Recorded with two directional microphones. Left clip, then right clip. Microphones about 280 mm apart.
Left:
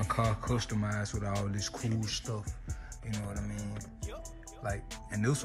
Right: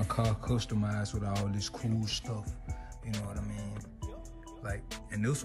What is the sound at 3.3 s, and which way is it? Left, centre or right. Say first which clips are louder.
Speech: left 1 dB; centre.